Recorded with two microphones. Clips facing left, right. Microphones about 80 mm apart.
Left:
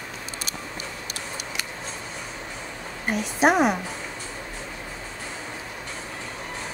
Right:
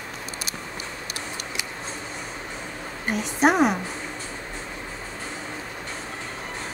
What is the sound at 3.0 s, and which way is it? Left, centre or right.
Speech, centre.